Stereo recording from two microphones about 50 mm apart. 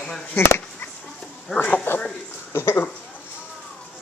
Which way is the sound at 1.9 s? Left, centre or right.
Left.